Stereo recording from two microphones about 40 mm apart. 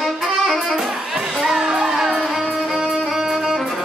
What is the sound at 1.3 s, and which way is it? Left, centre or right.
Music, centre.